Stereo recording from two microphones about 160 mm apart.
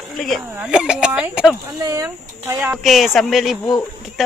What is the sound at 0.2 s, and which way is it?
Speech, centre (ahead or behind).